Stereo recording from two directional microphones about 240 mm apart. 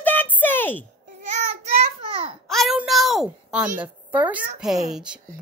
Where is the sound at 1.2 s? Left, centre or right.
Right.